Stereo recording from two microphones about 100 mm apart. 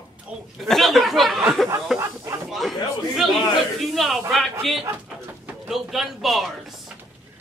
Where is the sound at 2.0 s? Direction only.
30° right (ahead or behind).